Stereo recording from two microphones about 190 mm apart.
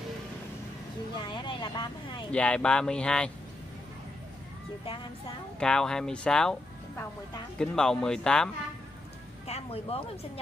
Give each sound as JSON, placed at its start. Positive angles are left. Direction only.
{"t": 1.1, "sound": "speech", "side_deg": 25}
{"t": 2.3, "sound": "speech", "side_deg": 5}
{"t": 5.6, "sound": "speech", "side_deg": 5}
{"t": 7.5, "sound": "speech", "side_deg": 5}
{"t": 9.5, "sound": "speech", "side_deg": 30}